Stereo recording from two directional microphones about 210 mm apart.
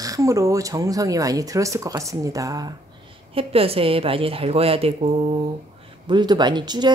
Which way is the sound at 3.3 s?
25° right (ahead or behind).